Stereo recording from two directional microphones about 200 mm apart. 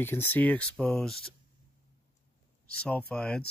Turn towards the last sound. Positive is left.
turn(degrees=5)  # may be behind; listen again after turning